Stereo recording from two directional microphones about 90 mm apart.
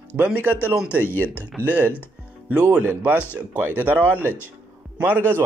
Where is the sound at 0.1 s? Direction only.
20° right (ahead or behind).